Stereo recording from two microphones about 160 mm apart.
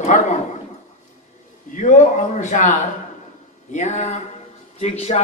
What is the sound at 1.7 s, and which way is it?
A man's voice, 50° left (ahead or behind).